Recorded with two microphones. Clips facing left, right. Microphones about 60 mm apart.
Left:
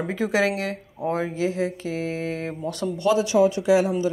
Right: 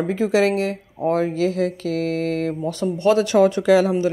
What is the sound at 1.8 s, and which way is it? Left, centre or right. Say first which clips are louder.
Mantra: right 5 dB; right.